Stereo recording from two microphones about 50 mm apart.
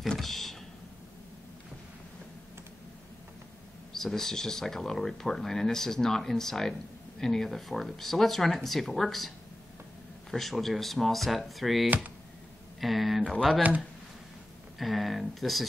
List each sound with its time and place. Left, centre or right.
0.2 s a sound: centre
3.9 s speech: centre
10.3 s speech: centre
13.6 s speech: right
14.8 s speech: centre